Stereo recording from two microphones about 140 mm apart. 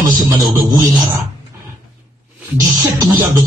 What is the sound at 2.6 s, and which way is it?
Speech, 25° right (ahead or behind).